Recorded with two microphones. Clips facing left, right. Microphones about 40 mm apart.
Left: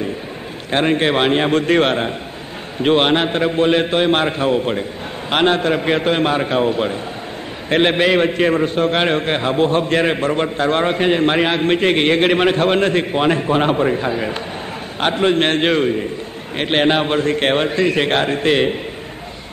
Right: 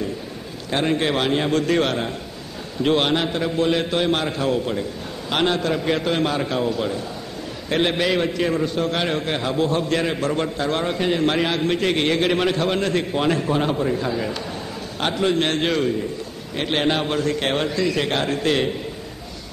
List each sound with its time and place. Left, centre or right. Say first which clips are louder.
0.7 s a man's voice: left 5 dB; left